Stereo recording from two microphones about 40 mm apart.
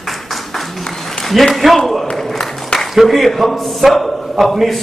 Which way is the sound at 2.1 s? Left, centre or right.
Centre.